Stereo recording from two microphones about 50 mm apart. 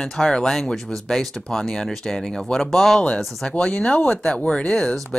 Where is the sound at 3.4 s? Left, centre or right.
Centre.